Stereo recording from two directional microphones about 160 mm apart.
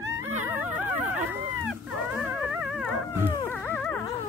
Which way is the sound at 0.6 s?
50° right (ahead or behind).